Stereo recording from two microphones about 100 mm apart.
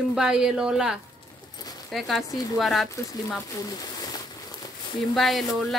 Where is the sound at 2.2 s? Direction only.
35° left (ahead or behind).